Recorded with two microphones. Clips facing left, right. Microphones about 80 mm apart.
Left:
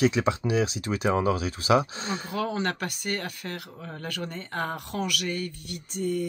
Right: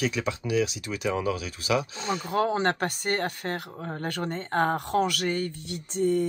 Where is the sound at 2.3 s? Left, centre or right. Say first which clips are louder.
Right 5 dB; right.